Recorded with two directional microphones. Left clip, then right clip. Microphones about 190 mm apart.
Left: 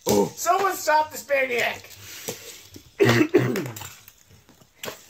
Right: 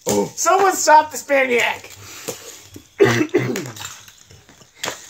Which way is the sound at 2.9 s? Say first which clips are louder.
Right 3 dB; 15° left (ahead or behind).